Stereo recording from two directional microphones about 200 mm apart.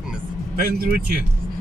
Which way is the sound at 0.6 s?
50° right (ahead or behind).